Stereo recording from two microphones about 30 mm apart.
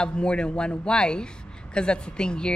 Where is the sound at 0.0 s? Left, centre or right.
Left.